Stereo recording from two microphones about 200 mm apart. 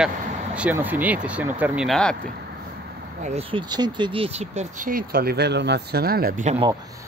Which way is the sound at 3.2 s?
30° right (ahead or behind).